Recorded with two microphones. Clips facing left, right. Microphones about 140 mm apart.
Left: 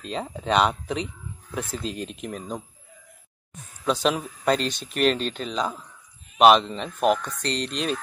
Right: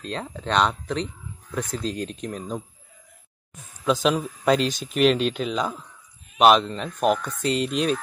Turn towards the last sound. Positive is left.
turn(degrees=-5)  # may be behind; listen again after turning